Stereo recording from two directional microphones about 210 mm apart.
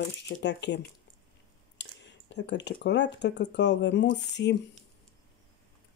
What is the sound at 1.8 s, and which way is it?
Speech, 55° left (ahead or behind).